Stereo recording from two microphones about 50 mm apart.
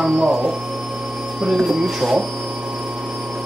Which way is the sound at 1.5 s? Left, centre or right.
Centre.